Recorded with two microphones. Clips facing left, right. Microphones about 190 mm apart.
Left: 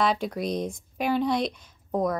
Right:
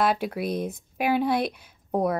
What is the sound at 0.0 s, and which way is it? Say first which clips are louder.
Speech: right 1 dB; 5° right (ahead or behind).